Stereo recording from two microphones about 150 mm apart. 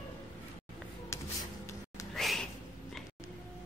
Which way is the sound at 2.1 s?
Centre (ahead or behind).